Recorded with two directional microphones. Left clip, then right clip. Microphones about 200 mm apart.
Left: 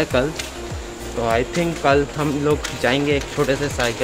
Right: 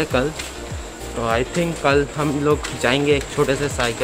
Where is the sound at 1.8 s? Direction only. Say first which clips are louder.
Left 1 dB; 10° right (ahead or behind).